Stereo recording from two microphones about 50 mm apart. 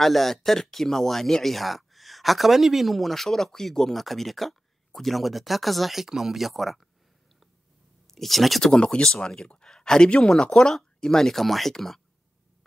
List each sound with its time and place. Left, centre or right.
0.0 s speech: centre
8.1 s speech: centre
8.6 s speech: centre